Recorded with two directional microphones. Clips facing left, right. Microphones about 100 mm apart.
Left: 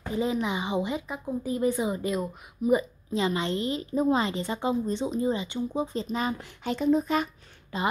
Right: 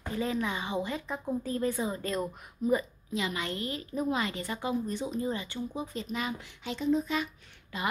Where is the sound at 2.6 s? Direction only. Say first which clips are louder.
Left 4 dB; 30° right (ahead or behind).